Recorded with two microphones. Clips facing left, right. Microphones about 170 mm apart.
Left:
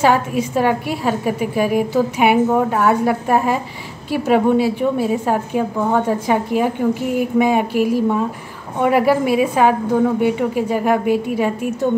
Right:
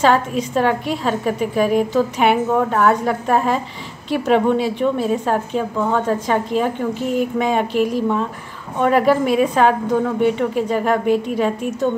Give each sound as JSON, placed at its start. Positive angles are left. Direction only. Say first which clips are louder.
{"t": 0.0, "sound": "a woman's voice", "louder": "even", "side_deg": 10}